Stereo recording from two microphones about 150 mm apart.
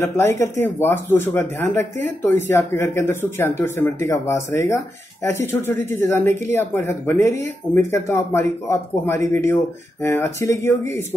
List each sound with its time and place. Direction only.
0.0 s speech: 15° left (ahead or behind)